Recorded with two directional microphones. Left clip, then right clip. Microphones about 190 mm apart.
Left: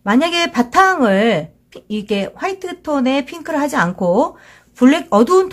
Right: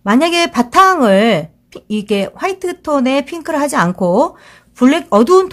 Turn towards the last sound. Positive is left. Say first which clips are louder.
# right 3 dB
turn(degrees=-20)  # may be behind; listen again after turning